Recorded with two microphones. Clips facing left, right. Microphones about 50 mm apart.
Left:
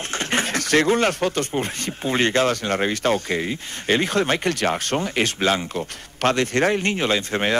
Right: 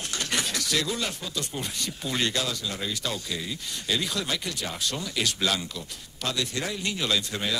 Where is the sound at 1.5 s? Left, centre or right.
Left.